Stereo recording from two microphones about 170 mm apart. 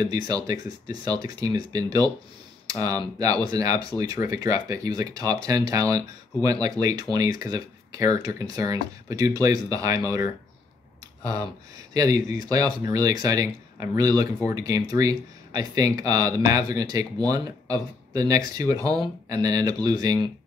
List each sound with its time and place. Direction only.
0.0 s speech: 20° right (ahead or behind)
11.9 s speech: 20° right (ahead or behind)